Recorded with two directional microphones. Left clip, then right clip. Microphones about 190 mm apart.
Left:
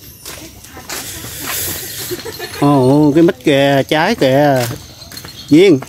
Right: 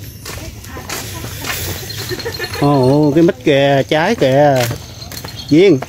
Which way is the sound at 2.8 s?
55° left (ahead or behind).